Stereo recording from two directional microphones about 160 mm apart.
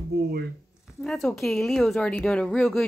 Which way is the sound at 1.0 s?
Centre (ahead or behind).